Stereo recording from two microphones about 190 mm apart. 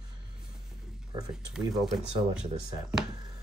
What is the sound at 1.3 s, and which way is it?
Speech, centre (ahead or behind).